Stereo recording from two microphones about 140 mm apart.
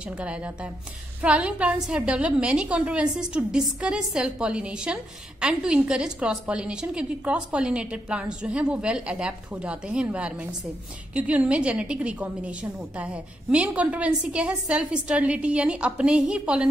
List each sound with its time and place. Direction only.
0.0 s a woman's voice: 10° right (ahead or behind)